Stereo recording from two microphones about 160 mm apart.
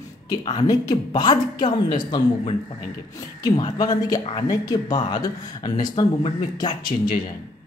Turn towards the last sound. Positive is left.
turn(degrees=25)  # may be behind; listen again after turning